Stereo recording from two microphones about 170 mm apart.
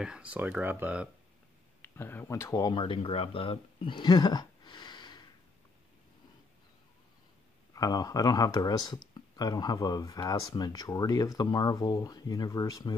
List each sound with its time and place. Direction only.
0.0 s speech: 5° right (ahead or behind)
1.8 s speech: 10° left (ahead or behind)
7.7 s speech: 20° left (ahead or behind)